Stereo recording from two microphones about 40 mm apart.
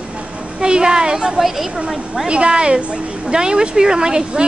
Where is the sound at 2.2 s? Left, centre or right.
Right.